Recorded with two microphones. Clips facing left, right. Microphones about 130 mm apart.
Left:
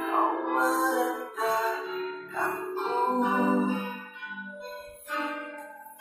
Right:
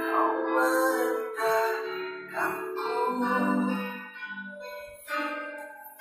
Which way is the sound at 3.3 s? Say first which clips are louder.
Left 1 dB; 10° left (ahead or behind).